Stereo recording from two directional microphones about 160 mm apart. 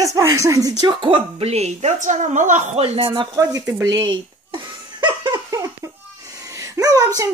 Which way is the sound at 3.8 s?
25° right (ahead or behind).